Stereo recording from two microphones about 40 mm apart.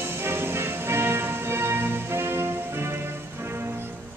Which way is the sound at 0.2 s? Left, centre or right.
Right.